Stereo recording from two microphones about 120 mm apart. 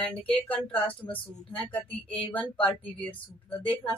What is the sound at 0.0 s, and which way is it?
Speech, 10° left (ahead or behind).